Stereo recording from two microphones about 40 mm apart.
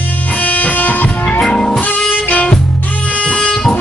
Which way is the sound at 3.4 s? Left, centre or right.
Centre.